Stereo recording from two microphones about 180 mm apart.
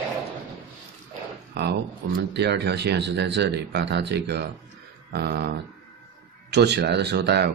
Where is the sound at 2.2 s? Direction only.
70° right (ahead or behind).